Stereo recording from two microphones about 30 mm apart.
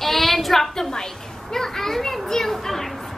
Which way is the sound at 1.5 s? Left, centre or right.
Centre.